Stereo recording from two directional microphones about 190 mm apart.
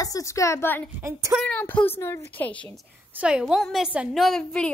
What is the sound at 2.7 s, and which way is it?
A woman's voice, 5° right (ahead or behind).